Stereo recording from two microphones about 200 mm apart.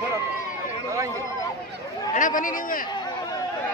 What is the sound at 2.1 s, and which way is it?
Speech, 40° left (ahead or behind).